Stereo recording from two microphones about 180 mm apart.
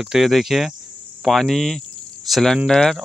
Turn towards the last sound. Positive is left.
turn(degrees=5)  # may be behind; listen again after turning